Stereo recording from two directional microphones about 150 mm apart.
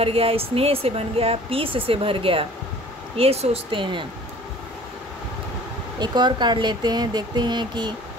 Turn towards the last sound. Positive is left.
turn(degrees=-30)  # may be behind; listen again after turning